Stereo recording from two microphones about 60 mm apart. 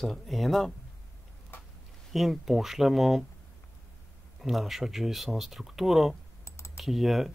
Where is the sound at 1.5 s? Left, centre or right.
Left.